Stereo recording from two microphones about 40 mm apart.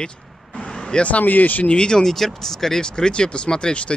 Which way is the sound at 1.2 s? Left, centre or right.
Left.